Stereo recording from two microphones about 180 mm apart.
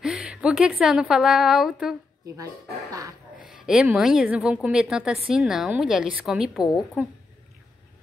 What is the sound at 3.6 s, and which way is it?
A woman's voice, 5° right (ahead or behind).